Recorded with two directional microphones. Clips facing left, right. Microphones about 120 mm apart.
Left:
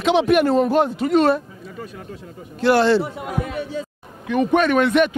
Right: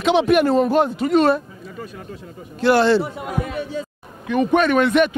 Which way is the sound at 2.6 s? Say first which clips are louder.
Even; 10° right (ahead or behind).